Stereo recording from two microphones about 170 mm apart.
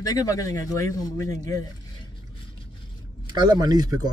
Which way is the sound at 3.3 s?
25° right (ahead or behind).